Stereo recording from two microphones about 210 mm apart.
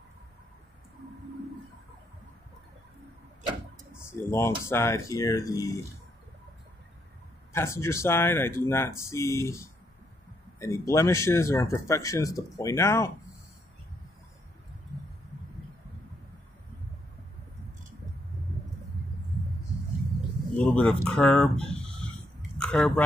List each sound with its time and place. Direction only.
4.1 s speech: 10° left (ahead or behind)
7.5 s speech: 15° left (ahead or behind)
10.6 s speech: 15° left (ahead or behind)
20.5 s speech: 5° left (ahead or behind)